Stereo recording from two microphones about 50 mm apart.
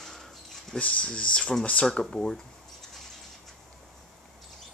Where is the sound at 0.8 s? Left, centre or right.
Left.